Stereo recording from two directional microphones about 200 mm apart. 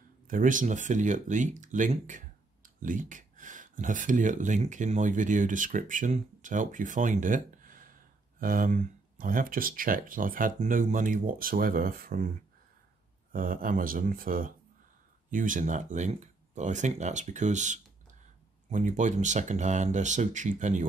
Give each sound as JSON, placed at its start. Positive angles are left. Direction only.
{"t": 0.3, "sound": "speech", "side_deg": -40}
{"t": 13.3, "sound": "speech", "side_deg": -45}